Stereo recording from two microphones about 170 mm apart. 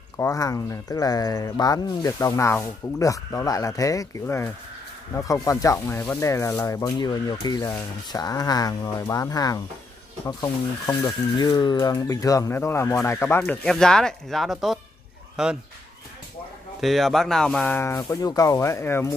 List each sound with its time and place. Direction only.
0.2 s speech: 20° left (ahead or behind)
13.7 s speech: 5° left (ahead or behind)
16.8 s speech: centre (ahead or behind)